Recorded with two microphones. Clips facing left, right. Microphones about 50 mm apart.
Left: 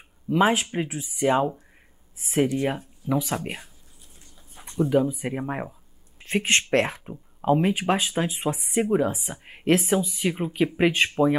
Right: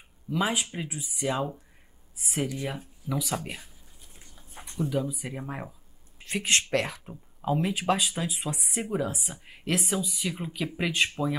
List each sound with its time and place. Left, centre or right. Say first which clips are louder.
0.3 s speech: left 7 dB; left